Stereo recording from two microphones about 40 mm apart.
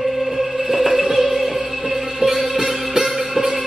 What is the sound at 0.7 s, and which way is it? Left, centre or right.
Music, centre.